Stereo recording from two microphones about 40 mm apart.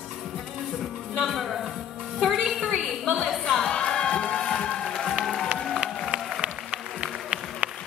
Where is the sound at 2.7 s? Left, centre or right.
Centre.